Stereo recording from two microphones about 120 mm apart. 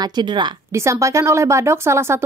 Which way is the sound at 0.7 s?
25° right (ahead or behind).